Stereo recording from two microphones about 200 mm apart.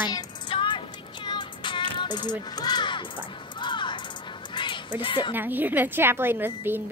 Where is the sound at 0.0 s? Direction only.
20° left (ahead or behind).